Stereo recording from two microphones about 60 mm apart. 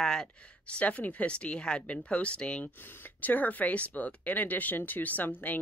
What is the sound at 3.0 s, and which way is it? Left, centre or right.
Speech, left.